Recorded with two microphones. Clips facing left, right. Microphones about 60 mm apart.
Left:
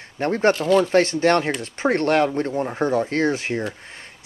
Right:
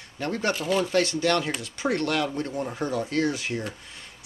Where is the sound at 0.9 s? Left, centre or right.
Left.